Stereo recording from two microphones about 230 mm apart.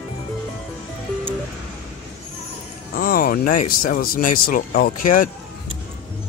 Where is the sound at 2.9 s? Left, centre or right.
Left.